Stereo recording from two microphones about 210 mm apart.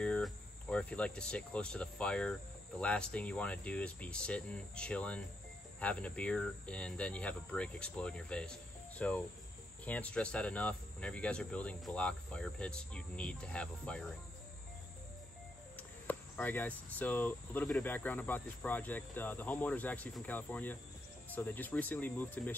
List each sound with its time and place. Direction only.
0.0 s speech: 5° left (ahead or behind)
15.7 s speech: 10° left (ahead or behind)